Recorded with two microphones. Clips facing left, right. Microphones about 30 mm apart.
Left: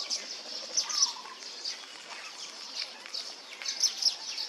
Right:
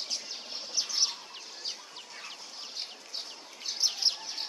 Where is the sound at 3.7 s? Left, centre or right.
Centre.